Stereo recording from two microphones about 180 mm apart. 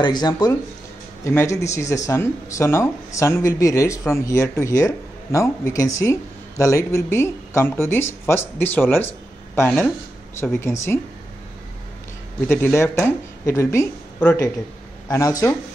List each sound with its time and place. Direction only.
0.0 s speech: 25° left (ahead or behind)
12.4 s speech: 10° left (ahead or behind)